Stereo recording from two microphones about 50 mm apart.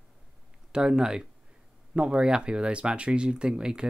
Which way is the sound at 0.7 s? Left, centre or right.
Centre.